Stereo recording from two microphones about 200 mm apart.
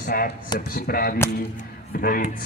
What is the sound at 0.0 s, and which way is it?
A man's voice, 45° left (ahead or behind).